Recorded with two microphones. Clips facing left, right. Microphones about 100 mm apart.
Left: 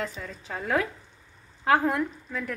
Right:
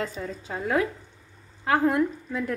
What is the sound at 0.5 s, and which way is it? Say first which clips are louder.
Speech: right 2 dB; 10° right (ahead or behind).